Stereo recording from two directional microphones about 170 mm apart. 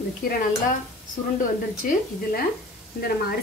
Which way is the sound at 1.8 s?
55° left (ahead or behind).